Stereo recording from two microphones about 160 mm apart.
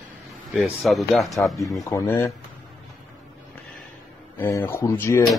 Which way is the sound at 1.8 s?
20° left (ahead or behind).